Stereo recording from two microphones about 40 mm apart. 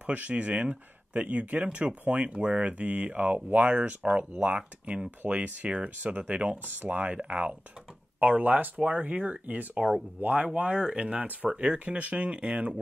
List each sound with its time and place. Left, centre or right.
0.0 s speech: right
5.7 s speech: right
6.6 s speech: right
7.2 s speech: right